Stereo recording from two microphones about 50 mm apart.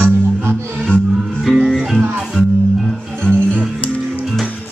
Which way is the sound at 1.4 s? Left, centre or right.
Centre.